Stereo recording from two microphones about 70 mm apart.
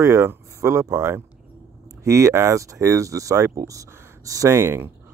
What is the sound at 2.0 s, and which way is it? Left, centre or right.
Speech, right.